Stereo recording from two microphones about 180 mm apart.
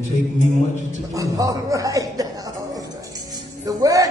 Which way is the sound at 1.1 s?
20° right (ahead or behind).